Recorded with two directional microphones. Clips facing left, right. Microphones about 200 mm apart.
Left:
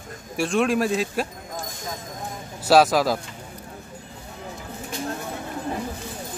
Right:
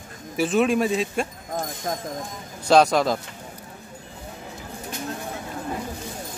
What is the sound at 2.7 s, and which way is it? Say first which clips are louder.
Speech: even; 5° left (ahead or behind).